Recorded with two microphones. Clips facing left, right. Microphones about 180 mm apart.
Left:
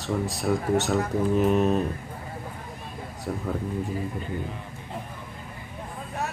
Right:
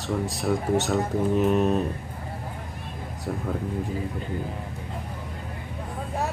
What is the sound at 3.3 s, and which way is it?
Speech, centre (ahead or behind).